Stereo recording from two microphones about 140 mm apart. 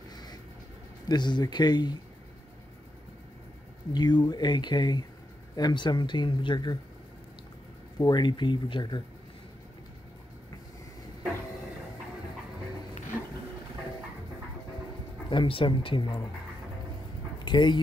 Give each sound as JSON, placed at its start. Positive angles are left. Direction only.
{"t": 0.1, "sound": "music", "side_deg": 30}
{"t": 1.0, "sound": "speech", "side_deg": 30}
{"t": 3.9, "sound": "speech", "side_deg": 30}
{"t": 8.0, "sound": "speech", "side_deg": 30}
{"t": 15.2, "sound": "speech", "side_deg": 40}
{"t": 17.4, "sound": "a sound", "side_deg": 35}